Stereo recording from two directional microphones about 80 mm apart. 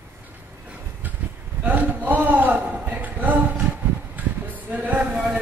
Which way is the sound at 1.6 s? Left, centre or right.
Right.